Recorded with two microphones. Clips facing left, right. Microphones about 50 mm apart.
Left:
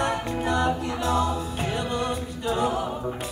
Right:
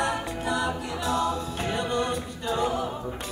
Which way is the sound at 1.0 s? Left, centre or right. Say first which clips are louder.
Left 1 dB; centre.